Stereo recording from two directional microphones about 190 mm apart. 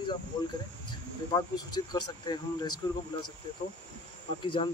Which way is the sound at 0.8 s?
20° left (ahead or behind).